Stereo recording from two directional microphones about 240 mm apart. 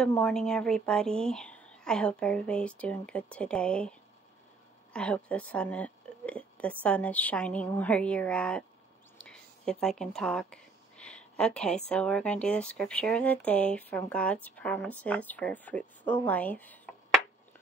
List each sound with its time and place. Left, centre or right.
0.0 s speech: centre
4.9 s speech: centre